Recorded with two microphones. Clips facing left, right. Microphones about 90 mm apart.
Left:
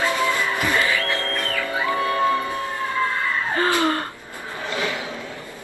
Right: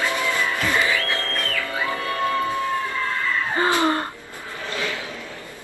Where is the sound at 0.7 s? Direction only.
20° right (ahead or behind).